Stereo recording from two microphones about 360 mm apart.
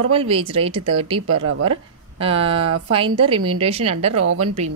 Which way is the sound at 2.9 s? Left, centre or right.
Centre.